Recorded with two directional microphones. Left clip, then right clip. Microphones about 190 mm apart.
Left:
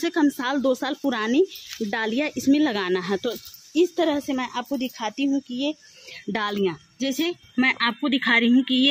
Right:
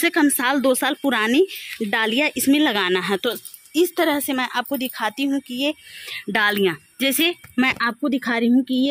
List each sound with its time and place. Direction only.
0.0 s speech: 5° right (ahead or behind)